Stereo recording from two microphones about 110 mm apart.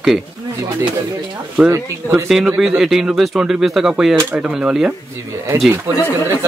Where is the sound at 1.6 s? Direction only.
5° right (ahead or behind).